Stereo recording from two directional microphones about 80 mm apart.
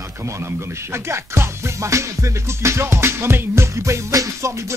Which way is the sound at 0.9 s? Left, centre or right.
Right.